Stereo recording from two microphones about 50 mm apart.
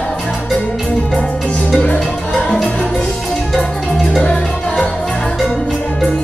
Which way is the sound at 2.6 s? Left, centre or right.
Left.